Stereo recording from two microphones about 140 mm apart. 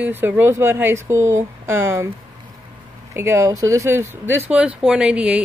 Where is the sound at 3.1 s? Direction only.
20° right (ahead or behind).